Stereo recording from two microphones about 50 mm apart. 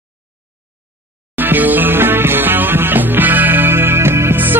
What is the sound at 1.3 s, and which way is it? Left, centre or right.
Music, right.